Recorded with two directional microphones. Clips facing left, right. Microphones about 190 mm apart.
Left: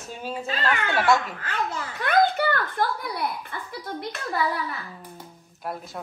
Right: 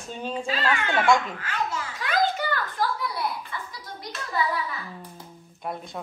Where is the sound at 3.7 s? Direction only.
60° left (ahead or behind).